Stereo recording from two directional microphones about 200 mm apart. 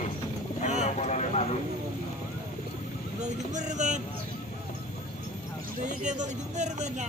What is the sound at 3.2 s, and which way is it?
Vehicle, 35° right (ahead or behind).